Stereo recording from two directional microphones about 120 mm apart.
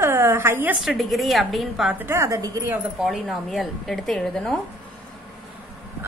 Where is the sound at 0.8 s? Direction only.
Centre (ahead or behind).